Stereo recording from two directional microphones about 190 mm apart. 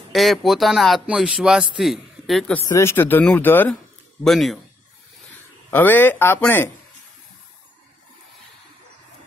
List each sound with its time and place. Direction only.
0.1 s speech: centre (ahead or behind)
2.7 s speech: 15° left (ahead or behind)
5.7 s speech: 10° left (ahead or behind)